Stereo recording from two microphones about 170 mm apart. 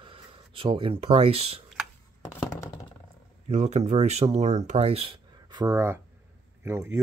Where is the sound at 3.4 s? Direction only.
40° right (ahead or behind); by 7.0 s 15° right (ahead or behind).